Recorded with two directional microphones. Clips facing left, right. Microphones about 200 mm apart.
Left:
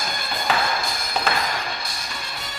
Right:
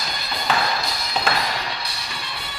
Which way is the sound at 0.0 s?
50° left (ahead or behind).